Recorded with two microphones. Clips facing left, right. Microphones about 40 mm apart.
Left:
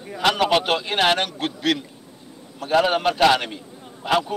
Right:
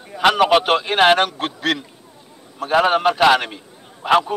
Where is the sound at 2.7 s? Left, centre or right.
Centre.